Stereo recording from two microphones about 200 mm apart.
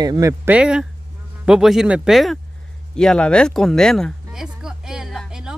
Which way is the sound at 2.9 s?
5° left (ahead or behind).